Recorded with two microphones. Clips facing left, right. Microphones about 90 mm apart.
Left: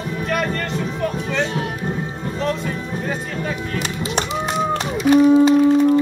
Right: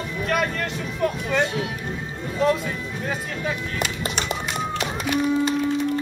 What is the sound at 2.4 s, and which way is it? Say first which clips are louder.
Music: right 2 dB; 5° right (ahead or behind).